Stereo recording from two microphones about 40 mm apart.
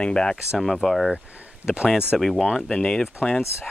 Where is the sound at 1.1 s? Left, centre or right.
Right.